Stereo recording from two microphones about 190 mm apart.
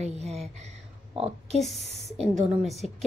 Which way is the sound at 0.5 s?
35° right (ahead or behind).